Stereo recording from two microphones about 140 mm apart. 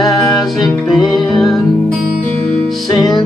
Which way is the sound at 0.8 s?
Centre (ahead or behind).